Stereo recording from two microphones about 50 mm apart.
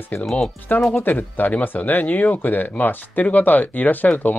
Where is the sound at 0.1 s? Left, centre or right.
Left.